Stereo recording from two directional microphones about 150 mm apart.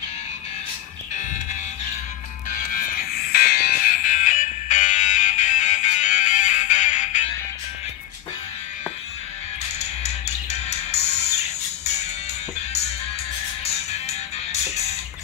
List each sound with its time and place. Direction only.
3.3 s music: 90° left; by 7.2 s 55° left (ahead or behind)
9.8 s music: 45° left (ahead or behind)